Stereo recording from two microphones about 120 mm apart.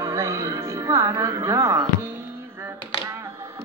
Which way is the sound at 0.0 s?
25° right (ahead or behind).